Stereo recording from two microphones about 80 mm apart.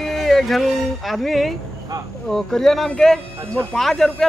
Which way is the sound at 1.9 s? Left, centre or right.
Right.